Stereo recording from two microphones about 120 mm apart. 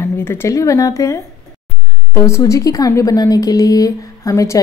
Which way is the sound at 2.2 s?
25° left (ahead or behind).